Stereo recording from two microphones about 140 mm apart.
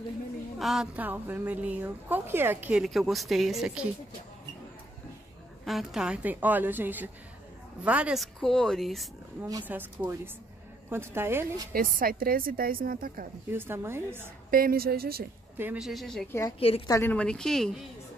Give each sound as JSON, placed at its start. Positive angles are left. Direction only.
{"t": 0.6, "sound": "speech", "side_deg": 0}
{"t": 1.0, "sound": "a woman's voice", "side_deg": -15}
{"t": 2.8, "sound": "speech", "side_deg": 0}
{"t": 5.7, "sound": "a woman's voice", "side_deg": 0}
{"t": 9.7, "sound": "a woman's voice", "side_deg": -15}
{"t": 11.7, "sound": "a woman's voice", "side_deg": -90}
{"t": 13.5, "sound": "a woman's voice", "side_deg": -15}
{"t": 14.5, "sound": "a woman's voice", "side_deg": -90}
{"t": 15.5, "sound": "a woman's voice", "side_deg": -15}
{"t": 15.8, "sound": "speech", "side_deg": 0}
{"t": 16.3, "sound": "a woman's voice", "side_deg": 20}
{"t": 16.5, "sound": "a woman's voice", "side_deg": 45}
{"t": 16.8, "sound": "a woman's voice", "side_deg": 20}